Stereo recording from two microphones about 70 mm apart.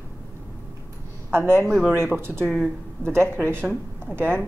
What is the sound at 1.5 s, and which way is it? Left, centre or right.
Speech, right.